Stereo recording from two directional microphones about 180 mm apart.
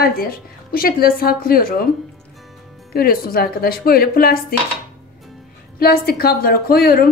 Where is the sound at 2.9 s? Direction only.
55° left (ahead or behind).